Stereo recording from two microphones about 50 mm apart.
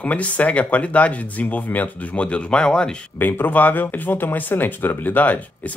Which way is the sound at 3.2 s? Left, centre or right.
Left.